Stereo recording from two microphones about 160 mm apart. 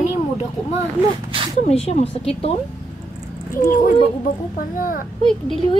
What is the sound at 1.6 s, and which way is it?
Speech, 40° left (ahead or behind).